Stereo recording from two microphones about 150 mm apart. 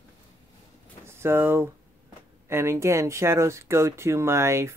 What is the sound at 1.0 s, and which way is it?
Speech, 15° right (ahead or behind).